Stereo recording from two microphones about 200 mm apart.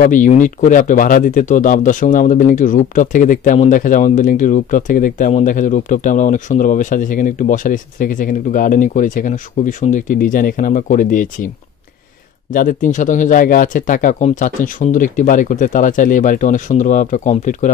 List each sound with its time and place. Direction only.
0.0 s a man's voice: 40° left (ahead or behind)
12.5 s a man's voice: 40° left (ahead or behind)